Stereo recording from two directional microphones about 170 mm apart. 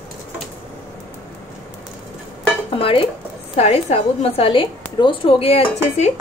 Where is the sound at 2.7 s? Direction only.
30° left (ahead or behind).